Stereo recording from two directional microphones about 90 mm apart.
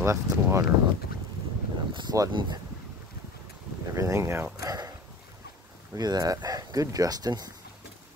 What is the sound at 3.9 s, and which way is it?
Speech, 35° right (ahead or behind).